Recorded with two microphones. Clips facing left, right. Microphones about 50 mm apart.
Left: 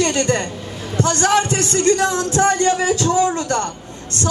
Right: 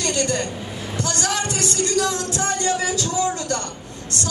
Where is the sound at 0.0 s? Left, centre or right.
Left.